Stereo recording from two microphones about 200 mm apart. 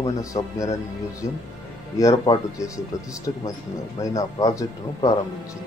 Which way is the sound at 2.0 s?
15° left (ahead or behind).